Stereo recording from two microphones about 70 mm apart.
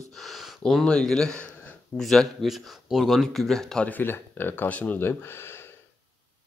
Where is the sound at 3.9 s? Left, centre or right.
Left.